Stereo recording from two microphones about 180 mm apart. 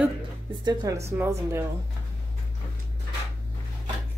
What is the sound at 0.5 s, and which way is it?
Speech, 20° right (ahead or behind).